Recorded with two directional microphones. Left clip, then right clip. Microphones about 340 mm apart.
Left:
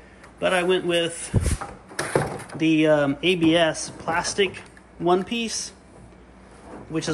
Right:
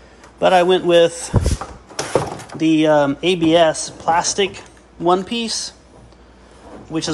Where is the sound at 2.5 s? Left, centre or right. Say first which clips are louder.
Right 5 dB; centre.